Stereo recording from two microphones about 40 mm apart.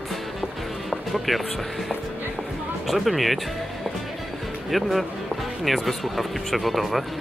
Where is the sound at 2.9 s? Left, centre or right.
Centre.